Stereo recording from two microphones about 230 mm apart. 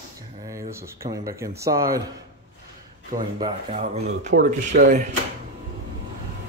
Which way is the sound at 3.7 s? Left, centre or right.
Right.